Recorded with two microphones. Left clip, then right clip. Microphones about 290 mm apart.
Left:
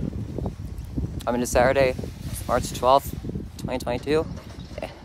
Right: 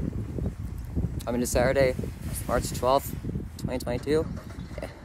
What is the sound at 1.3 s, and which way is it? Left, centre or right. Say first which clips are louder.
Speech: left 5 dB; centre.